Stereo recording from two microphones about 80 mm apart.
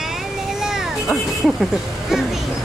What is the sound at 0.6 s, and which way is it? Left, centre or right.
Speech, centre.